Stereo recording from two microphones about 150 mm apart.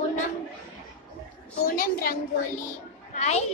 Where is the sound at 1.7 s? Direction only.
75° left (ahead or behind).